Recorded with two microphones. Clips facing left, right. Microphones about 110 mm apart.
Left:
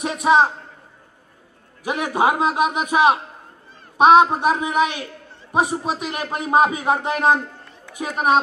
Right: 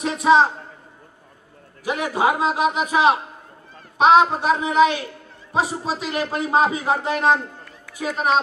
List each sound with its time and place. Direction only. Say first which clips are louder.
0.2 s a man's voice: right 1 dB; 15° left (ahead or behind)
1.9 s a man's voice: left 1 dB; 20° left (ahead or behind)